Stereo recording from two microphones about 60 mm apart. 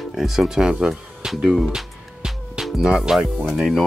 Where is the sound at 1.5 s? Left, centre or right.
Centre.